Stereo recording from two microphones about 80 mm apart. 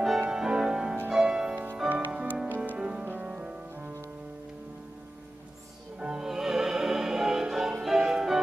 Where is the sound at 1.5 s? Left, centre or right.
Right.